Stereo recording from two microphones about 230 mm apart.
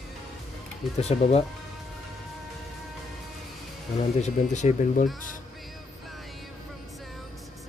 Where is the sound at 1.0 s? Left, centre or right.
Left.